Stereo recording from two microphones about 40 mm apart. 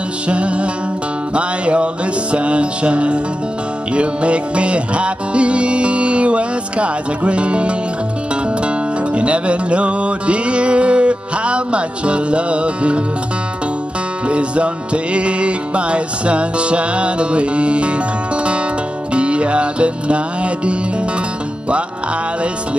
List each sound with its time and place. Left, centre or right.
0.3 s music: right
14.2 s music: right